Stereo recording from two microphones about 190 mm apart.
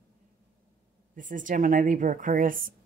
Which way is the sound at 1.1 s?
45° right (ahead or behind).